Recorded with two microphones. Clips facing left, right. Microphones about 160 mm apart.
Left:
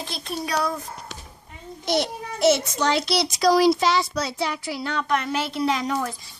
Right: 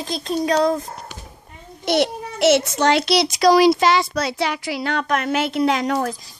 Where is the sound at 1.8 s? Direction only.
70° right (ahead or behind).